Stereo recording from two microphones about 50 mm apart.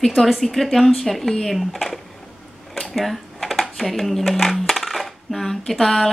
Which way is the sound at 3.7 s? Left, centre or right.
Centre.